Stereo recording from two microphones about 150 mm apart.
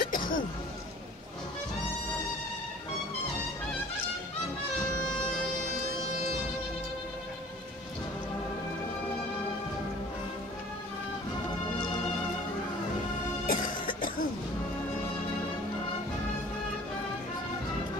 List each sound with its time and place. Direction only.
0.0 s music: 70° left (ahead or behind)
13.5 s music: 65° left (ahead or behind)